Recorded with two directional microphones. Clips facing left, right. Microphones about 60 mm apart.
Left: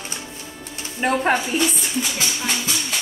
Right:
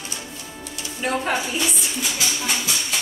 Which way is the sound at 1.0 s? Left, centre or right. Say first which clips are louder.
Left 4 dB; left.